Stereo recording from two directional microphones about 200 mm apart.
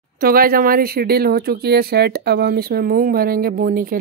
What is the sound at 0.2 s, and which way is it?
Speech, 45° right (ahead or behind).